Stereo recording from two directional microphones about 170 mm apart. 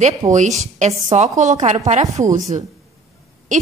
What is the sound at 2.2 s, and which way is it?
Speech, 20° right (ahead or behind).